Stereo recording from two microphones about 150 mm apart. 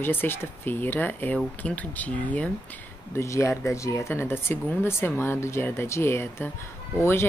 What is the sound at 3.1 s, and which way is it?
Speech, 20° left (ahead or behind).